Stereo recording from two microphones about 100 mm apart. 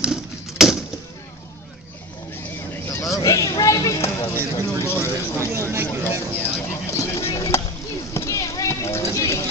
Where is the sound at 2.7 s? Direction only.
30° left (ahead or behind).